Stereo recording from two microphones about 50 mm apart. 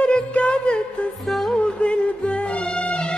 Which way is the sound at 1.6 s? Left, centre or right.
Left.